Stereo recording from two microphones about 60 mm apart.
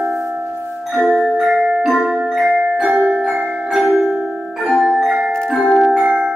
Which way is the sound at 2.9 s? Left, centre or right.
Right.